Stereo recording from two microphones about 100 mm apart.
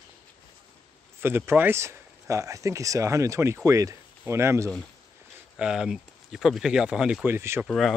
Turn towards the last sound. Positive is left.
turn(degrees=0)  # may be behind; listen again after turning